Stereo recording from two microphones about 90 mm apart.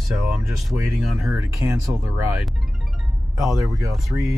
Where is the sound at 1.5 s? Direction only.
40° right (ahead or behind).